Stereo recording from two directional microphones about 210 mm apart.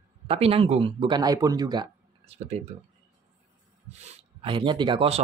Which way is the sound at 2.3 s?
30° right (ahead or behind).